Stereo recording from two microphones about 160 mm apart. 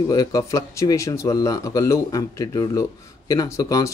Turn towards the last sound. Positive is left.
turn(degrees=20)  # may be behind; listen again after turning